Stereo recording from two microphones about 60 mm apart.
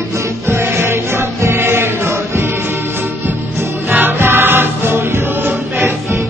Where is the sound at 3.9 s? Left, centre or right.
Right.